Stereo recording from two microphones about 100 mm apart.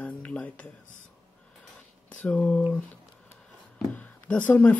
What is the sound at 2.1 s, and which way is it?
Speech, 15° left (ahead or behind).